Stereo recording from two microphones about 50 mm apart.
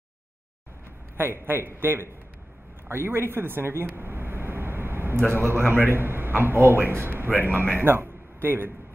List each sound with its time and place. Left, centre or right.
1.1 s a man's voice: right
2.9 s a sound: right
5.2 s a man's voice: right
7.3 s a man's voice: centre
7.8 s a man's voice: right